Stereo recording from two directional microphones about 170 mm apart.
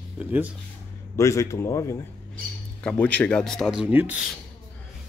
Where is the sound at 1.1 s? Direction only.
20° left (ahead or behind); by 4.3 s 10° right (ahead or behind).